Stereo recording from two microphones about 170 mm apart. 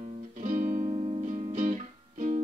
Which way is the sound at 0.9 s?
35° right (ahead or behind).